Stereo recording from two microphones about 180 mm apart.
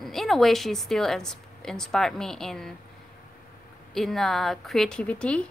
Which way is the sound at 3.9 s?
Centre (ahead or behind).